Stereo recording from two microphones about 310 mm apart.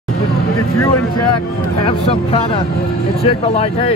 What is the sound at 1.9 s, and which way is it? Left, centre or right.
Speech, centre.